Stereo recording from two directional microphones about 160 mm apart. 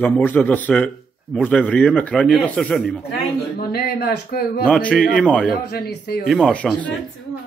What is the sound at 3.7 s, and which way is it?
Speech, 70° left (ahead or behind).